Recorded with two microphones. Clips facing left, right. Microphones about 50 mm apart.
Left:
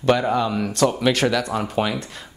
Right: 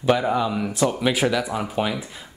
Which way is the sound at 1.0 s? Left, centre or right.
Centre.